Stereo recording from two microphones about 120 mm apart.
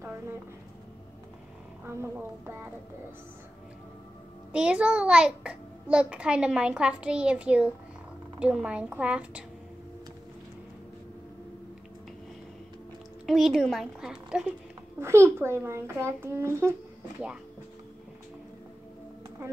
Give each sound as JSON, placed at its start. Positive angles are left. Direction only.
{"t": 2.0, "sound": "a child's voice", "side_deg": -20}
{"t": 4.5, "sound": "a child's voice", "side_deg": -10}
{"t": 13.3, "sound": "speech", "side_deg": 0}
{"t": 15.0, "sound": "a child's voice", "side_deg": -20}